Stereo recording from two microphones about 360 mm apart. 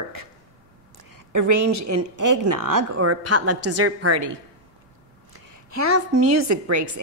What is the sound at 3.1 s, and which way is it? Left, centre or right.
A woman's voice, right.